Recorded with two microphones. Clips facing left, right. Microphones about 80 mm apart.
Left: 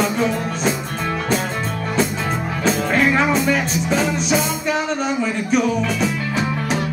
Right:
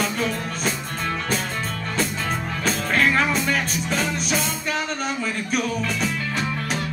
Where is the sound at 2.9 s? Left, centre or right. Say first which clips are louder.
Left 2 dB; centre.